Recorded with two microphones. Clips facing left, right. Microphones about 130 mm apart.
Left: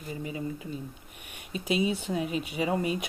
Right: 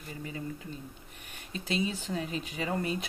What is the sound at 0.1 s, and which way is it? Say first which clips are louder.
Speech: left 4 dB; 15° left (ahead or behind).